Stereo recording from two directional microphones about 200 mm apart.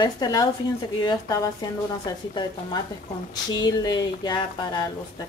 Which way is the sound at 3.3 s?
20° left (ahead or behind).